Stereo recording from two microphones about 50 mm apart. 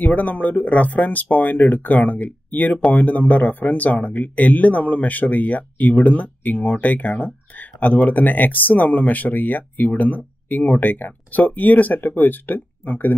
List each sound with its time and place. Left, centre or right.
0.0 s speech: left